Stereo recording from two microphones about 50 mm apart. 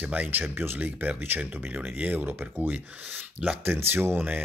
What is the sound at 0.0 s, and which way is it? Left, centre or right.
Speech, right.